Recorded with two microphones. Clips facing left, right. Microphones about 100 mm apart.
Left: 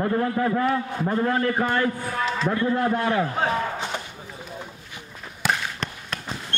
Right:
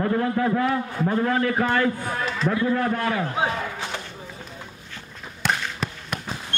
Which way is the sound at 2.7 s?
20° left (ahead or behind).